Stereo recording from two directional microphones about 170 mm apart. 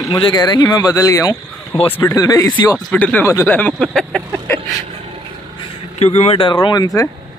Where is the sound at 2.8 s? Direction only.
10° left (ahead or behind).